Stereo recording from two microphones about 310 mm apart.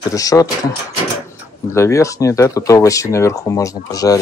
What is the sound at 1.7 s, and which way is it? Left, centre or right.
Speech, centre.